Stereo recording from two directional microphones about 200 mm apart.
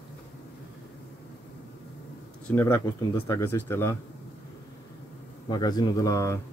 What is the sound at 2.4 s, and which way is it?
Speech, 10° left (ahead or behind).